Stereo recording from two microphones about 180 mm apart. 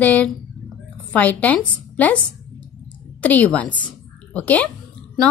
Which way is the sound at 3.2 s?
10° left (ahead or behind).